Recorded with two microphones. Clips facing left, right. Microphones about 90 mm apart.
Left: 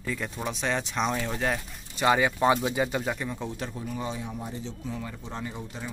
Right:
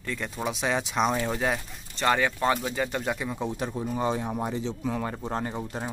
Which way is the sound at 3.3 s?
15° right (ahead or behind).